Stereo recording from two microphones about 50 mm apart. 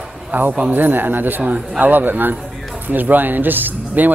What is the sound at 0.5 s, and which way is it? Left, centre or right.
A man's voice, right.